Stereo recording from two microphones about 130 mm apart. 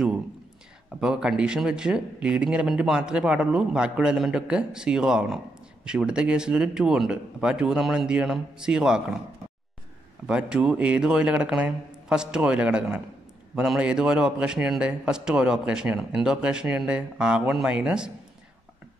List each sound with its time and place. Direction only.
1.0 s a man's voice: 5° right (ahead or behind)
10.2 s a man's voice: 5° right (ahead or behind)